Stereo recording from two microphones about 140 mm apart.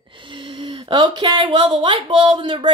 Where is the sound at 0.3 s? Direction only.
35° right (ahead or behind).